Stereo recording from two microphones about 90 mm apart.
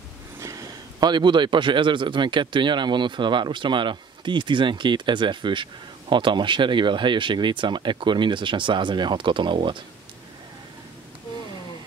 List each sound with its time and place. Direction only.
0.4 s a man's voice: 40° right (ahead or behind); by 9.8 s 65° right (ahead or behind)